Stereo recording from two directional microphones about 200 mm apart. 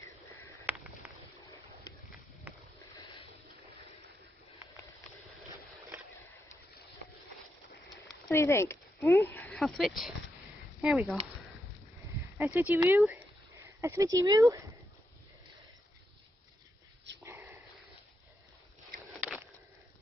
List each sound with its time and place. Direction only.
0.7 s a sound: 10° right (ahead or behind)
1.9 s a sound: 25° left (ahead or behind)
2.5 s boat: 5° right (ahead or behind)
5.0 s vehicle: 5° right (ahead or behind)
8.3 s speech: 15° left (ahead or behind)
12.4 s speech: 10° right (ahead or behind)
17.2 s sniff: 15° right (ahead or behind)